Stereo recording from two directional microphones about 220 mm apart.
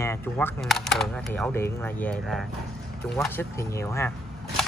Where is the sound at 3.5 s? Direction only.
15° left (ahead or behind).